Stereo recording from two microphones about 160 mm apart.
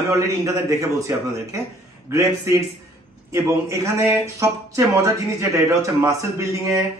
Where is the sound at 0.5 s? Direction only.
20° right (ahead or behind).